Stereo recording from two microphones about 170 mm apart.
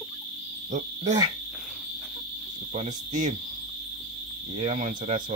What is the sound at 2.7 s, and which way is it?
Speech, 45° right (ahead or behind).